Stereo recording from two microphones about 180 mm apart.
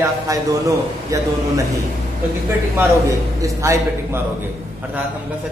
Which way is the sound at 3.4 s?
15° right (ahead or behind).